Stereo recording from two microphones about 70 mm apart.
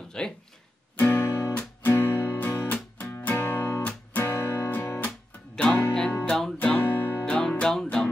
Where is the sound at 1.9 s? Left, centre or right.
Left.